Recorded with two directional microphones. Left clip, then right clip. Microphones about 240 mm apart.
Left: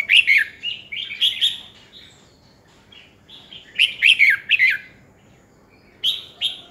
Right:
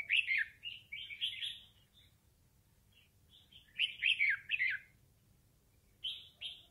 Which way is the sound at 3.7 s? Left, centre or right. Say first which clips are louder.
Left 19 dB; centre.